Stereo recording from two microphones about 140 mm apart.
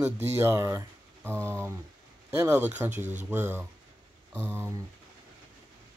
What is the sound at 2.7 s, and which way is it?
Speech, 15° right (ahead or behind).